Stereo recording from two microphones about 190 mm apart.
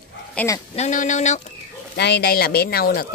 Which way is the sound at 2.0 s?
60° left (ahead or behind).